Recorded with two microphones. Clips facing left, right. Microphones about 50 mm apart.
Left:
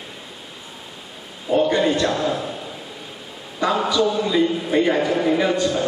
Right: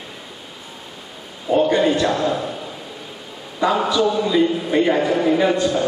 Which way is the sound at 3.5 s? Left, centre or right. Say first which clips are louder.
Right 2 dB; centre.